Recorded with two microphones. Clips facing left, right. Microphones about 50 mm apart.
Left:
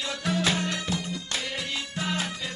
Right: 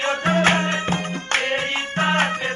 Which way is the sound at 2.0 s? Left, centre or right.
Right.